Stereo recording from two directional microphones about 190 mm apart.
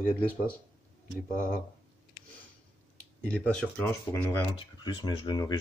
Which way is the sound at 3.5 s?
10° left (ahead or behind).